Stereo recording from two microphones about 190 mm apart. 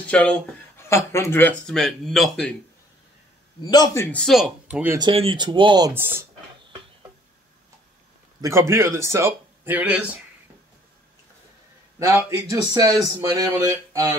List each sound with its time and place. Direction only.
0.0 s speech: 5° left (ahead or behind)
3.6 s a man's voice: 20° left (ahead or behind); by 4.9 s 5° right (ahead or behind)
4.9 s speech: 25° right (ahead or behind)
8.4 s speech: 15° right (ahead or behind)
12.1 s speech: 10° right (ahead or behind)